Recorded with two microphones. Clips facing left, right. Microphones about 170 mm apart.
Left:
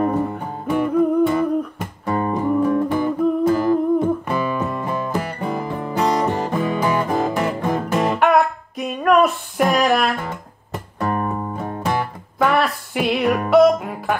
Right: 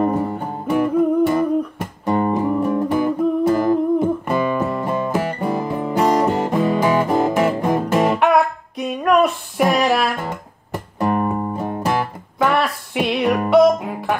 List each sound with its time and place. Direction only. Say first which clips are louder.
0.0 s music: right 1 dB; centre (ahead or behind)
11.0 s music: right 3 dB; 20° right (ahead or behind); by 14.1 s centre (ahead or behind)